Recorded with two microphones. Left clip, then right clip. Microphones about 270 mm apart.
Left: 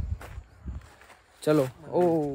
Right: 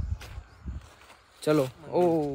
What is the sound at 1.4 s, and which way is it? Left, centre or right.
Speech, centre.